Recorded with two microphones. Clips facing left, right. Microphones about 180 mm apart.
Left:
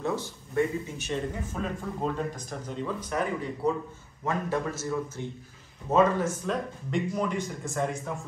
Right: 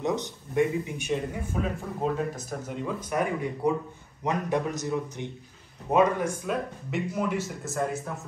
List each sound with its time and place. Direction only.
0.0 s a man's voice: 20° right (ahead or behind); by 8.0 s 5° right (ahead or behind)